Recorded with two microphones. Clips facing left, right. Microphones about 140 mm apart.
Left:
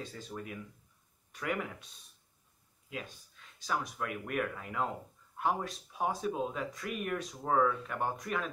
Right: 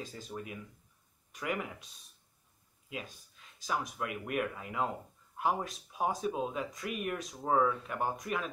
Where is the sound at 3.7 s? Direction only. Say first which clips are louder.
Even; 10° right (ahead or behind).